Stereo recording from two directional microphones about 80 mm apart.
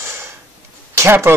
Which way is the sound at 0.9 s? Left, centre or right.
Right.